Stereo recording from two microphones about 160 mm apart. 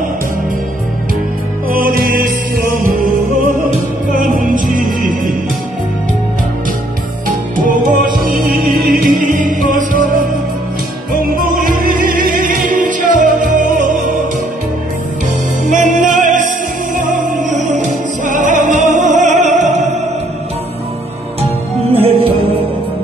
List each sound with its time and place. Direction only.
1.7 s music: 65° right (ahead or behind)
4.1 s music: 55° right (ahead or behind)
7.2 s music: 55° right (ahead or behind)
11.5 s music: 60° right (ahead or behind)
15.6 s music: 50° right (ahead or behind)
21.9 s music: 35° right (ahead or behind)